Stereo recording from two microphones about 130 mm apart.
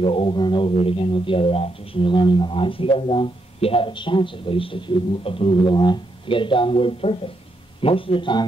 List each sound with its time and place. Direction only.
0.0 s a man's voice: 45° left (ahead or behind)